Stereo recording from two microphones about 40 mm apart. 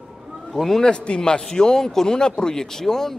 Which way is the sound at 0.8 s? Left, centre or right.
Left.